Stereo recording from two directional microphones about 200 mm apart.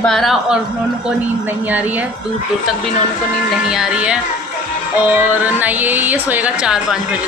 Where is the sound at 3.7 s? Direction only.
5° right (ahead or behind).